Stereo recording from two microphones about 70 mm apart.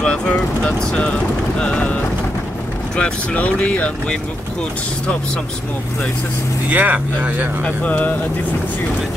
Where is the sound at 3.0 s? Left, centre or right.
Centre.